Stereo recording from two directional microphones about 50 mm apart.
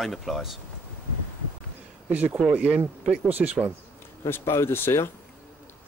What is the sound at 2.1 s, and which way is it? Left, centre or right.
Speech, right.